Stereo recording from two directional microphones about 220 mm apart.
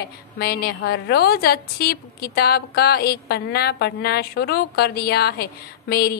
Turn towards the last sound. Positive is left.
turn(degrees=45)  # may be behind; listen again after turning